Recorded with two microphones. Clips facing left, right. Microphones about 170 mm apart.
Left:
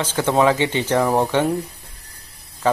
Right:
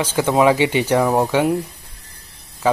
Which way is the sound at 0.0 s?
10° right (ahead or behind).